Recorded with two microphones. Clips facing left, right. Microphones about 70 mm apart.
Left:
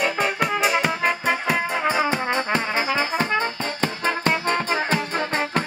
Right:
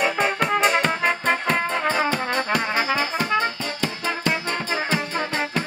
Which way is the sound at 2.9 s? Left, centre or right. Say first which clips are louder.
Even; left.